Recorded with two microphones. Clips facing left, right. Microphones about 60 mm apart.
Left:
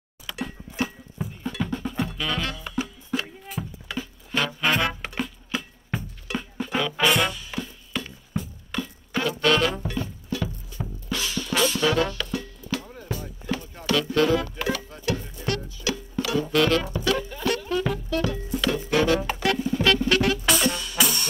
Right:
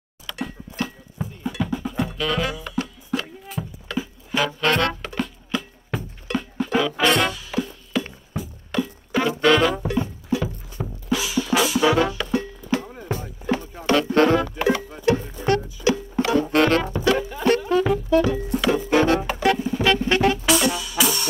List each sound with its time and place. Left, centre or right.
0.3 s a sound: centre
1.4 s music: centre
4.6 s music: centre
9.2 s music: right
9.8 s music: centre
11.1 s music: centre
11.9 s music: centre
12.4 s music: right
17.0 s music: right
19.3 s music: centre
20.4 s music: centre